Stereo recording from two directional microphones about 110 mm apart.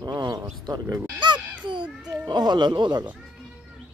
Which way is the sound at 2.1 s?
35° right (ahead or behind).